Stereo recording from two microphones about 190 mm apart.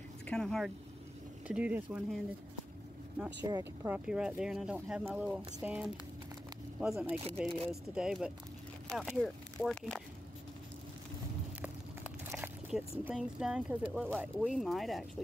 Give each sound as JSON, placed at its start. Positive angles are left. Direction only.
{"t": 0.3, "sound": "speech", "side_deg": 5}
{"t": 1.5, "sound": "speech", "side_deg": -10}
{"t": 3.4, "sound": "speech", "side_deg": -20}
{"t": 3.9, "sound": "speech", "side_deg": -5}
{"t": 11.6, "sound": "a sound", "side_deg": -10}
{"t": 13.0, "sound": "speech", "side_deg": -5}